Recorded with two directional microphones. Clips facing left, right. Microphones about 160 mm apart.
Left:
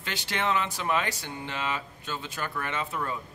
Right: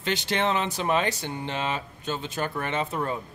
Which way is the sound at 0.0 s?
25° right (ahead or behind).